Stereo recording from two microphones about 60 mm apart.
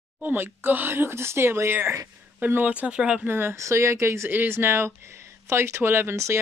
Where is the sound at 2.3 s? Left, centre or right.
Right.